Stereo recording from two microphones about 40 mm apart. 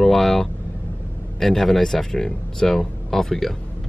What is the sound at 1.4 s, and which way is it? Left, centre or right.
Speech, centre.